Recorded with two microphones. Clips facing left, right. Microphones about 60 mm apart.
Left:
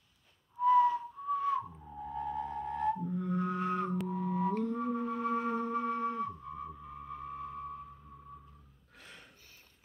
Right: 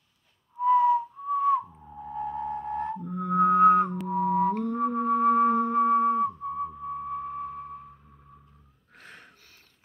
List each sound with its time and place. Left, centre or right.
0.6 s whistling: right
3.1 s music: right
6.5 s a sound: right
8.9 s snort: right